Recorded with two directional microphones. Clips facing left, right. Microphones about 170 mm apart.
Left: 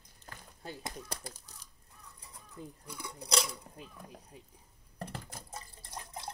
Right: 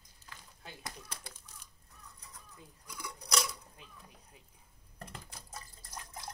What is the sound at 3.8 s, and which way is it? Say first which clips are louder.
Speech: left 8 dB; 40° left (ahead or behind).